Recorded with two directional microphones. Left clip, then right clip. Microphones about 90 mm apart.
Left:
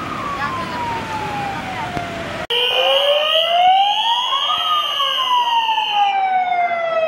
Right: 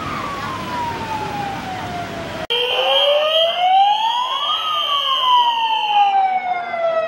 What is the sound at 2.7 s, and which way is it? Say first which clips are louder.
Alarm: even; 20° left (ahead or behind).